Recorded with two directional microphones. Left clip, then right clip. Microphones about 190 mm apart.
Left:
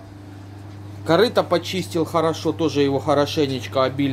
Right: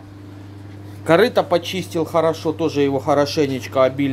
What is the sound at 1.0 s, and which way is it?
Speech, 10° right (ahead or behind).